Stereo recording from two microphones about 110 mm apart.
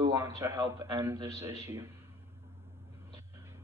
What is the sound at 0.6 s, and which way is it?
A man's voice, 35° right (ahead or behind).